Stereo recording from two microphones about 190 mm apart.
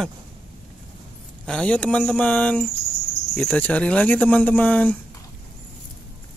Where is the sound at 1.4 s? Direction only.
5° left (ahead or behind).